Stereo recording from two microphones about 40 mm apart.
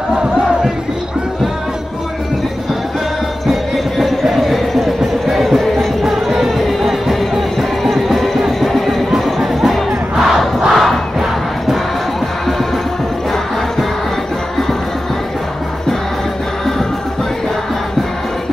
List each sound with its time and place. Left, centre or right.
3.7 s a sound: centre
8.5 s music: centre
9.4 s crowd: centre